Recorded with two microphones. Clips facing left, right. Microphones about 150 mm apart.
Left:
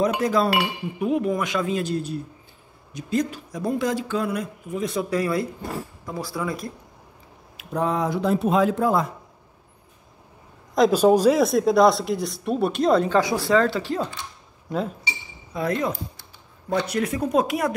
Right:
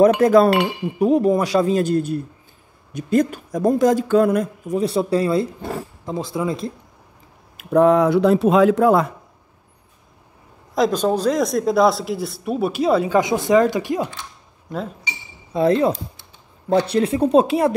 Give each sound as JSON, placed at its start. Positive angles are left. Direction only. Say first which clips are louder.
{"t": 0.0, "sound": "speech", "louder": "right 9 dB", "side_deg": -55}
{"t": 0.9, "sound": "speech", "louder": "right 7 dB", "side_deg": -35}
{"t": 4.7, "sound": "speech", "louder": "right 6 dB", "side_deg": -30}
{"t": 7.5, "sound": "speech", "louder": "right 10 dB", "side_deg": -65}
{"t": 10.7, "sound": "a sound", "louder": "even", "side_deg": 0}
{"t": 11.0, "sound": "speech", "louder": "left 2 dB", "side_deg": 10}
{"t": 13.2, "sound": "speech", "louder": "right 4 dB", "side_deg": -20}
{"t": 15.5, "sound": "speech", "louder": "right 8 dB", "side_deg": -30}